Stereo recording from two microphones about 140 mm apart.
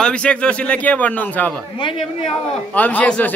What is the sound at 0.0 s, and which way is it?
A man's voice, 5° left (ahead or behind).